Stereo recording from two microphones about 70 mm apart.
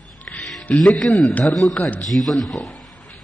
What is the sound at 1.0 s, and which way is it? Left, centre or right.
Speech, centre.